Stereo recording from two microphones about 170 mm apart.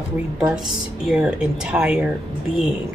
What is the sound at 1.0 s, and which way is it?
Speech, 5° right (ahead or behind).